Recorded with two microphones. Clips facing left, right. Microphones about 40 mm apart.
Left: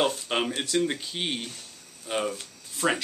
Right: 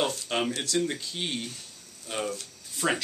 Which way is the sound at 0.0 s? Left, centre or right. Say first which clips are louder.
Left 2 dB; centre.